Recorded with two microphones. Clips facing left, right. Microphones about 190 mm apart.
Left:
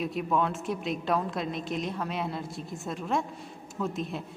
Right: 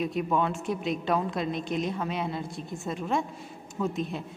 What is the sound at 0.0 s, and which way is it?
A woman's voice, centre (ahead or behind).